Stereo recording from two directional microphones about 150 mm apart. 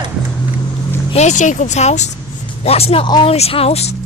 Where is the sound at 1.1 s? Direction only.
50° left (ahead or behind).